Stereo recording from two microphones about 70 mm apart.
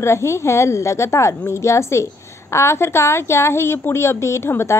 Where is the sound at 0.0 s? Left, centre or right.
Left.